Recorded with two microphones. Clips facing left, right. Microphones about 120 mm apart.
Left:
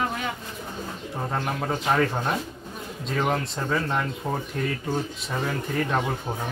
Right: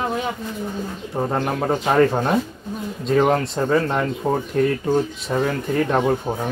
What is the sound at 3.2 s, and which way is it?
Speech, 45° right (ahead or behind).